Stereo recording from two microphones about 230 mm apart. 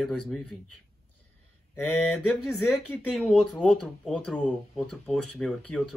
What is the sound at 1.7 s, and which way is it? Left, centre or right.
Mantra, centre.